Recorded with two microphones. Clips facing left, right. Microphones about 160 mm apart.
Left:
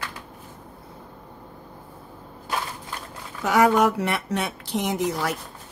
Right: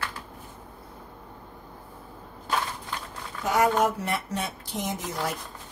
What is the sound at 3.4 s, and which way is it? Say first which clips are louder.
Speech: left 4 dB; 75° left (ahead or behind).